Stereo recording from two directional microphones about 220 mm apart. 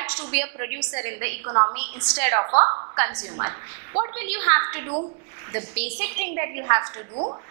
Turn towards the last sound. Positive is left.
turn(degrees=-30)  # may be behind; listen again after turning